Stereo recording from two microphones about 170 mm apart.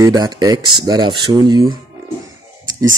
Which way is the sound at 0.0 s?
25° right (ahead or behind).